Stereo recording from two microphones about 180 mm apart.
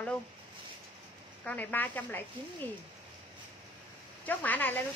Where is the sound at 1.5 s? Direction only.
10° left (ahead or behind).